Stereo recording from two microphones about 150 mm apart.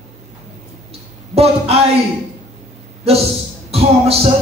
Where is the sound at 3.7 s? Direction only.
40° right (ahead or behind).